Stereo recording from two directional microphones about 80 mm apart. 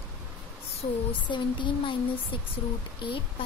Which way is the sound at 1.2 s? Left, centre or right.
Left.